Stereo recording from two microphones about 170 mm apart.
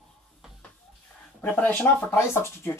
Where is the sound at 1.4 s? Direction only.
10° left (ahead or behind).